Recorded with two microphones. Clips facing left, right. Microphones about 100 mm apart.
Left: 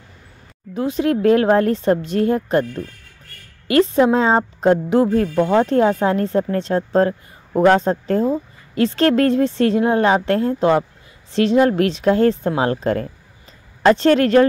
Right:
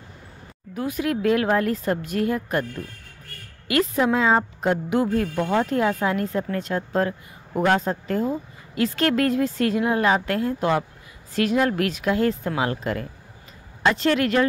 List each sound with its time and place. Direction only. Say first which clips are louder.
0.7 s a woman's voice: left 6 dB; 25° left (ahead or behind)